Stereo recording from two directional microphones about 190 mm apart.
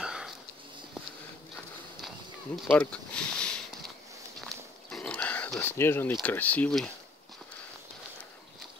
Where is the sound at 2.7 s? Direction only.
5° left (ahead or behind).